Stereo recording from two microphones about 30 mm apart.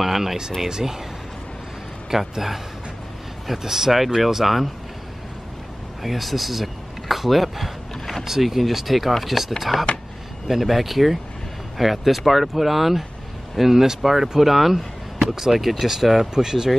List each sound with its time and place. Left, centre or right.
0.0 s speech: centre
2.0 s speech: centre
6.0 s speech: centre
14.8 s a sound: centre
15.3 s speech: centre